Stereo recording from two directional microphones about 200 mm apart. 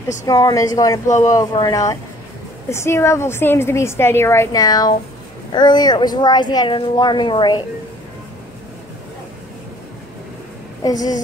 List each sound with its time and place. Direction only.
0.2 s a woman's voice: 20° left (ahead or behind)
10.8 s a woman's voice: 20° left (ahead or behind)